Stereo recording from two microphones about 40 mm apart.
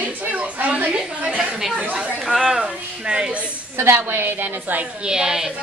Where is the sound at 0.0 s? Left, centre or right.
Right.